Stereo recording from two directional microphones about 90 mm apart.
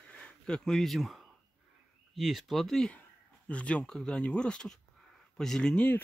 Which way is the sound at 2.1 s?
Centre (ahead or behind).